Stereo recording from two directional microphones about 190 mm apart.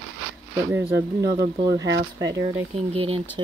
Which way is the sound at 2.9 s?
30° right (ahead or behind).